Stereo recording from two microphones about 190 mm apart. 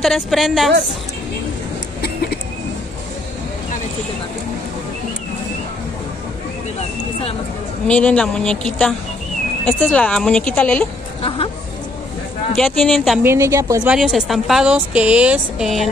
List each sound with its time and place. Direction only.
0.0 s a woman's voice: centre (ahead or behind)
2.0 s vehicle: 55° left (ahead or behind)
7.9 s a woman's voice: 5° left (ahead or behind)
11.2 s speech: 30° left (ahead or behind)
12.5 s a woman's voice: centre (ahead or behind)
13.2 s a woman's voice: 15° right (ahead or behind)
13.8 s a woman's voice: 5° right (ahead or behind)